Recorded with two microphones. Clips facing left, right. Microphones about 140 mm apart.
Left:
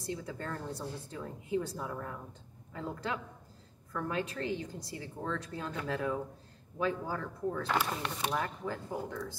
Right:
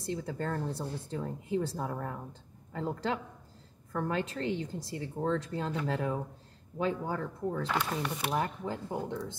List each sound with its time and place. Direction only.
0.0 s a woman's voice: 30° right (ahead or behind)
7.6 s speech: 5° left (ahead or behind)
8.3 s speech: 25° right (ahead or behind)